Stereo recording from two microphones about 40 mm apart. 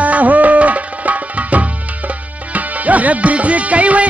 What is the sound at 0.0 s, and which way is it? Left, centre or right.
Music, right.